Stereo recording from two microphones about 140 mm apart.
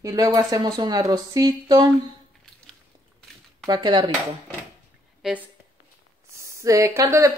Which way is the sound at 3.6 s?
30° right (ahead or behind).